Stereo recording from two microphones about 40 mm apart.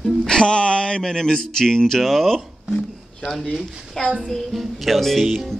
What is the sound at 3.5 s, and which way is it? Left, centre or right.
Speech, centre.